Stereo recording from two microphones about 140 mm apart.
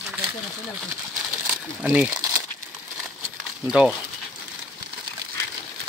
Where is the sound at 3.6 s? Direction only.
5° right (ahead or behind).